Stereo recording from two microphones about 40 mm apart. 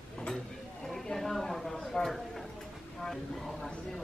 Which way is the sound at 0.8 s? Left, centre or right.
Centre.